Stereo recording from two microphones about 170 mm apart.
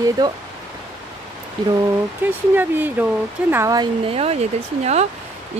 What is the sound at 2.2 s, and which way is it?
Speech, 10° right (ahead or behind).